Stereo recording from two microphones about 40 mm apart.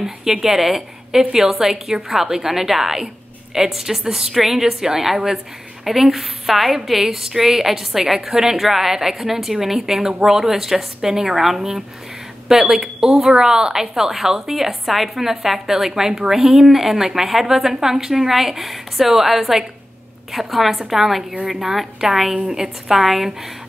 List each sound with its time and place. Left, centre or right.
0.0 s a woman's voice: centre